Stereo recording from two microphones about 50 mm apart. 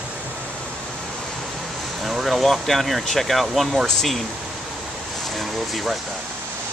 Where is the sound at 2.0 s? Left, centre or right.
Centre.